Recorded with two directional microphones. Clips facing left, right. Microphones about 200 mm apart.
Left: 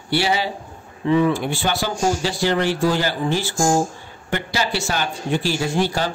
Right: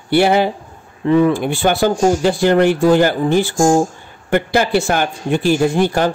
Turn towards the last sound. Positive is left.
turn(degrees=-55)  # may be behind; listen again after turning